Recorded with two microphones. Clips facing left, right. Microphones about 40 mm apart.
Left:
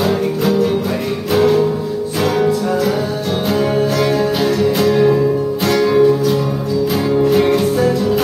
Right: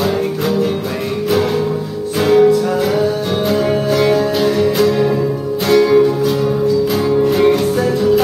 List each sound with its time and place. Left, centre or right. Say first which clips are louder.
1.3 s music: left 3 dB; centre
4.2 s music: right 1 dB; centre